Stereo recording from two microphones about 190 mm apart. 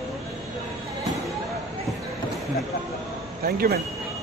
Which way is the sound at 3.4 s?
50° right (ahead or behind).